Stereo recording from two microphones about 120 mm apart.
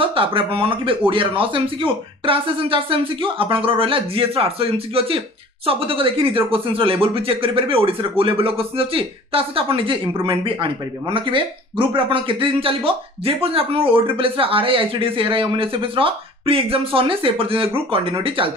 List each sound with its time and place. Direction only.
0.0 s speech: 50° right (ahead or behind)